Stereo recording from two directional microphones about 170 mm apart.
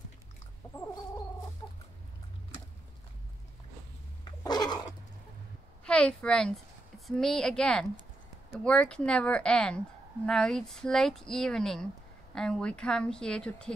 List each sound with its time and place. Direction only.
4.4 s cat: 25° left (ahead or behind)
5.9 s a woman's voice: 5° left (ahead or behind)